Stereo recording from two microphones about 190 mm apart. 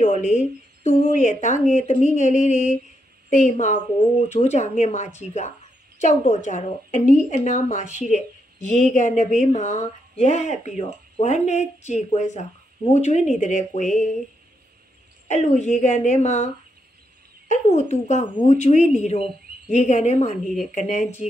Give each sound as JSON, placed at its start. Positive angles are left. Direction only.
{"t": 0.0, "sound": "speech", "side_deg": 40}
{"t": 15.2, "sound": "speech", "side_deg": 40}
{"t": 17.5, "sound": "speech", "side_deg": 40}